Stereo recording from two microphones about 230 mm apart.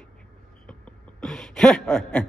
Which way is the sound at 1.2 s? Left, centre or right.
Centre.